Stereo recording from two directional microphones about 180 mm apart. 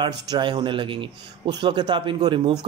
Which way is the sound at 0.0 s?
25° right (ahead or behind).